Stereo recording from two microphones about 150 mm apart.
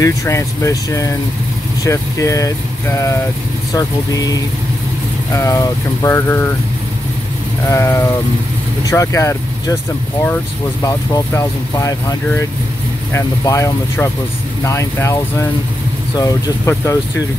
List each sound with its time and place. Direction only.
0.0 s speech: 20° left (ahead or behind)
7.6 s speech: 20° left (ahead or behind)